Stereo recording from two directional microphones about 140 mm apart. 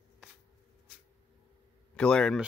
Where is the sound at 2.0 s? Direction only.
5° left (ahead or behind).